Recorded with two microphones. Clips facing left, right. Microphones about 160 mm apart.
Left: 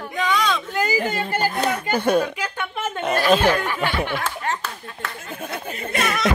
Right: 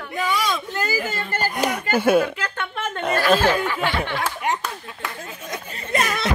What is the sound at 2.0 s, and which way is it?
Speech, 5° right (ahead or behind).